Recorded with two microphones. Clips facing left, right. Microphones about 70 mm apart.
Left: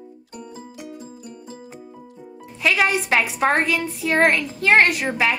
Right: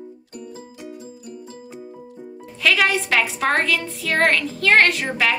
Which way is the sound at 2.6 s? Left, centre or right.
Left.